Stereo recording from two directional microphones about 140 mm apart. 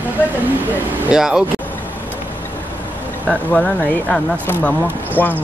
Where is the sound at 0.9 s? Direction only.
10° right (ahead or behind).